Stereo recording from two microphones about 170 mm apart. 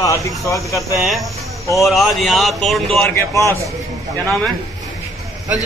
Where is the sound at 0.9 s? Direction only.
Centre (ahead or behind).